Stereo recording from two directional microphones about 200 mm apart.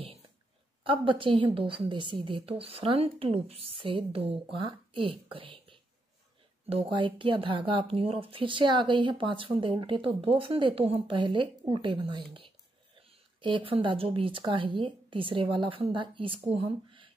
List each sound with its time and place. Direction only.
0.8 s speech: 25° right (ahead or behind)